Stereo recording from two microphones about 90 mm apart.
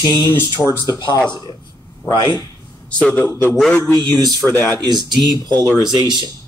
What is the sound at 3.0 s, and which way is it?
Speech, 15° left (ahead or behind).